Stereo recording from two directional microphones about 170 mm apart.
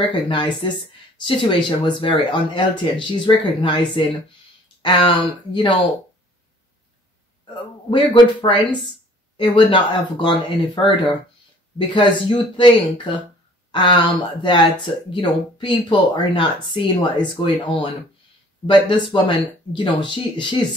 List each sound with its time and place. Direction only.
0.0 s speech: 30° left (ahead or behind)
8.1 s speech: 30° left (ahead or behind)